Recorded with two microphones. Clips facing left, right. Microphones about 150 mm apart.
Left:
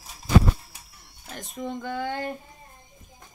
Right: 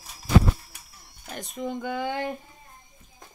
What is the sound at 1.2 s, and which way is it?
Speech, centre (ahead or behind).